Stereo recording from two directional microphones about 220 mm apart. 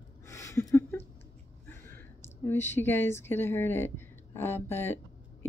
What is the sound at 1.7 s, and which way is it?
A woman's voice, 10° left (ahead or behind).